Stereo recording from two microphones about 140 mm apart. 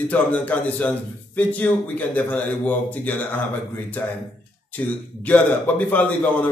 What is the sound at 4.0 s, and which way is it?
A man's voice, 15° left (ahead or behind).